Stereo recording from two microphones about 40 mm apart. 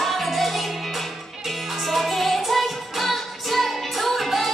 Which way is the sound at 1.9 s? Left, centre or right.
Centre.